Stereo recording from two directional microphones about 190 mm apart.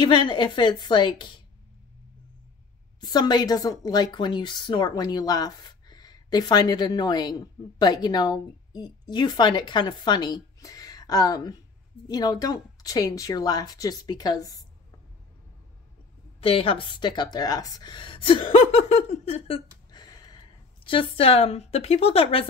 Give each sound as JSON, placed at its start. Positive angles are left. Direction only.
{"t": 0.0, "sound": "a woman's voice", "side_deg": 25}
{"t": 3.0, "sound": "a woman's voice", "side_deg": 20}
{"t": 16.3, "sound": "speech", "side_deg": 30}